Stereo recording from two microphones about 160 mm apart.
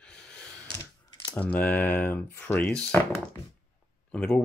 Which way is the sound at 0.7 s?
20° left (ahead or behind).